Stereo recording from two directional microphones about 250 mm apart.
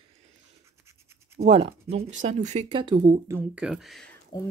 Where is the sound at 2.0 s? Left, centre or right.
Right.